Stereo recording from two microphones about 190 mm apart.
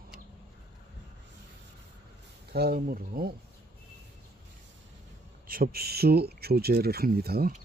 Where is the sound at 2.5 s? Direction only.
50° right (ahead or behind).